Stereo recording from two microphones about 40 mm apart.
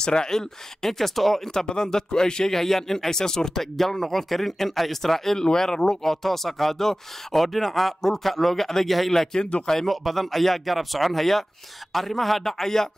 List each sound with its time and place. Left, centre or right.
0.0 s speech: centre
9.4 s speech: left
9.8 s speech: centre